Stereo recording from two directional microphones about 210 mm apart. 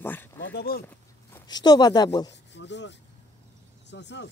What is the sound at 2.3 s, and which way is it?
Speech, 55° left (ahead or behind).